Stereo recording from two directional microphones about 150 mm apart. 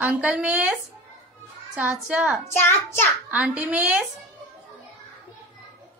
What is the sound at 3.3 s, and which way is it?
Speech, 10° right (ahead or behind).